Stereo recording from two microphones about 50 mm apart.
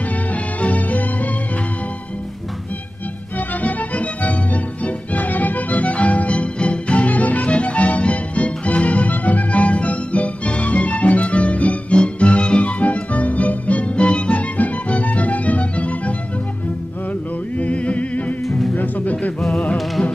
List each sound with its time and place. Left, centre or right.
0.3 s music: left
3.3 s music: left
17.6 s music: left
18.4 s music: centre
18.8 s music: left